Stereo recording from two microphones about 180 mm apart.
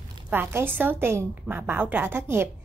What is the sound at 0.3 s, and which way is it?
Speech, 15° right (ahead or behind).